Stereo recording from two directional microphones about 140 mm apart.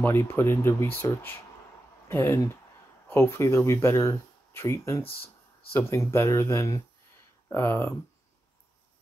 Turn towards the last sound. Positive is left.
turn(degrees=15)  # may be behind; listen again after turning